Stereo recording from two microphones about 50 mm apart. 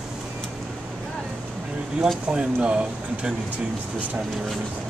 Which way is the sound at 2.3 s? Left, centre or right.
Right.